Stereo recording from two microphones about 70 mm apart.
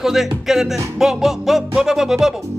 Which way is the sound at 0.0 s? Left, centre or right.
Centre.